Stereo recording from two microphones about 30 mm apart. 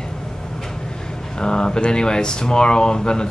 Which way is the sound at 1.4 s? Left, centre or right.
Left.